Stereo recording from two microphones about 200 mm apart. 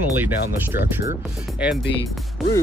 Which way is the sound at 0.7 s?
10° right (ahead or behind).